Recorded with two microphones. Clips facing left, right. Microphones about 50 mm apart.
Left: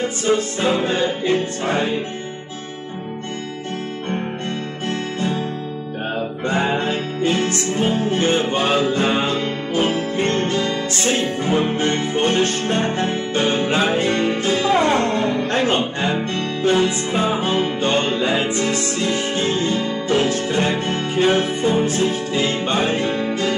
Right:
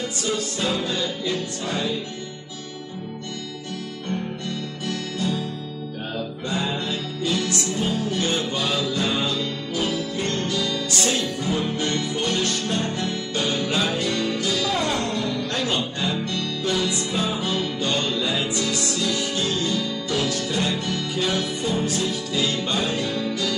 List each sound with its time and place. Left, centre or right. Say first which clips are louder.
0.0 s music: left 7 dB; left
4.8 s music: left 4 dB; left